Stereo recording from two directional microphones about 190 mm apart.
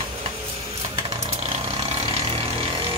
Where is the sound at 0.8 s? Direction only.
30° right (ahead or behind).